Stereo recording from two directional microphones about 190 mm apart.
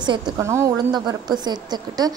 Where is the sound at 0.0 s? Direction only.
25° right (ahead or behind).